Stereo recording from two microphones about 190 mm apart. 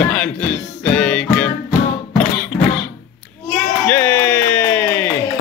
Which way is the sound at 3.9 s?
10° left (ahead or behind).